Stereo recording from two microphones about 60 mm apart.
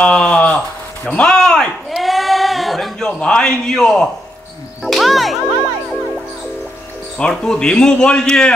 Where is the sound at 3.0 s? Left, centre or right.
Centre.